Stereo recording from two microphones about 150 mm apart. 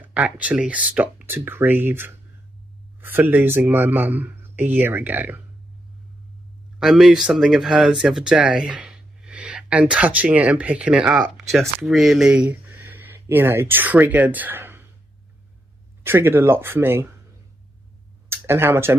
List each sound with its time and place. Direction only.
0.1 s speech: 10° right (ahead or behind)
6.8 s speech: centre (ahead or behind)
16.0 s speech: 15° right (ahead or behind)
18.3 s speech: 15° right (ahead or behind)